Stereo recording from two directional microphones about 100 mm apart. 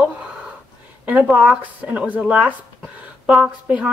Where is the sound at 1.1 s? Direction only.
15° right (ahead or behind).